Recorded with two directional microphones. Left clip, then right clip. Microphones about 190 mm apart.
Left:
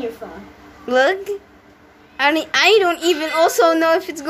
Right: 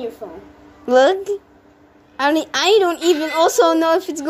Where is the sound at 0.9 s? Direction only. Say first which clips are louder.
Right 3 dB; 30° right (ahead or behind).